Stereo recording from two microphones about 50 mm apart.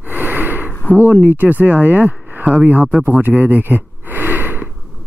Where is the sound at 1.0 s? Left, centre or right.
Right.